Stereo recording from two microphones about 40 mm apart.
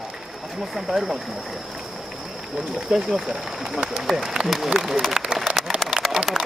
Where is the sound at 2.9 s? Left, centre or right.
Right.